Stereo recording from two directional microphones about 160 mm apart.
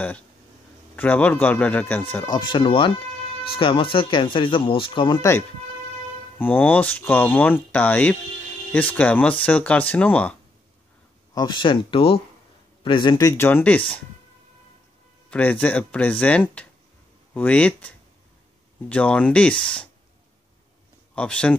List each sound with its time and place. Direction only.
0.9 s speech: 10° left (ahead or behind)
2.2 s speech: 25° left (ahead or behind)
6.3 s speech: 10° left (ahead or behind)
11.3 s speech: 30° left (ahead or behind); by 14.0 s 10° left (ahead or behind)
15.2 s speech: 10° left (ahead or behind)
21.1 s speech: 5° left (ahead or behind)